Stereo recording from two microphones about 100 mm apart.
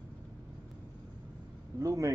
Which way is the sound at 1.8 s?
35° right (ahead or behind).